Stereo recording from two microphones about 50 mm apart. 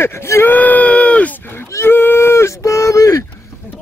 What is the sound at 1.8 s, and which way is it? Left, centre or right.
Speech, left.